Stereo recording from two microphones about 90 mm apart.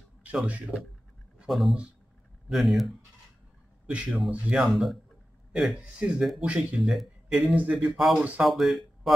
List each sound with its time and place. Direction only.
0.2 s speech: 15° right (ahead or behind)
1.4 s speech: centre (ahead or behind)
3.8 s speech: 15° right (ahead or behind)
4.6 s speech: centre (ahead or behind)
6.8 s speech: centre (ahead or behind)
7.5 s speech: 15° right (ahead or behind)
7.9 s speech: centre (ahead or behind)